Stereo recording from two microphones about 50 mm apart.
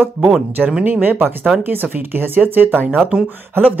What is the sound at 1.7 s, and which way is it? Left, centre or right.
Speech, right.